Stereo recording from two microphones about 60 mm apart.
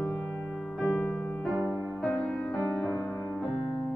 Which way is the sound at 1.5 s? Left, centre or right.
Centre.